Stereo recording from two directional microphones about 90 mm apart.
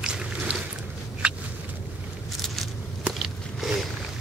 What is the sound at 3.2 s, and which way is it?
Biting, 5° right (ahead or behind).